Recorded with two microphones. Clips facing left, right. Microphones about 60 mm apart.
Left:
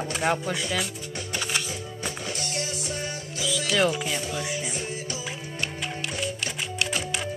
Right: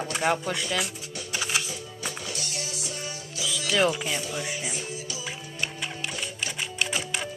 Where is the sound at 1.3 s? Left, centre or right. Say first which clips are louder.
Even; centre.